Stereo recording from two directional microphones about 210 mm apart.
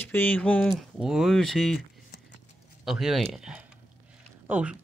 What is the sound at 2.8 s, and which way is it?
Speech, centre (ahead or behind).